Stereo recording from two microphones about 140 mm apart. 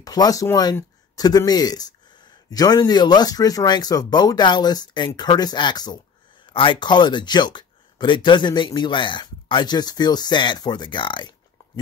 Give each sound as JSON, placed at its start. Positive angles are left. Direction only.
{"t": 0.0, "sound": "speech", "side_deg": 25}